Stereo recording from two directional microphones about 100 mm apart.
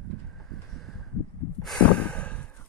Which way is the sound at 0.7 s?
Centre (ahead or behind).